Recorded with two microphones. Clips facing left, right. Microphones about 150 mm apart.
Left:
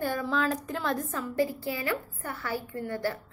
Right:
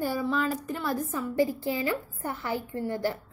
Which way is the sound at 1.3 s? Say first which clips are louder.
Right 2 dB; 15° right (ahead or behind).